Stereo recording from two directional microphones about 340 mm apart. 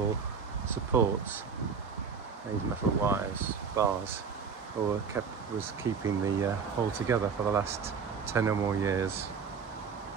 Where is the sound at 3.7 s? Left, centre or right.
Centre.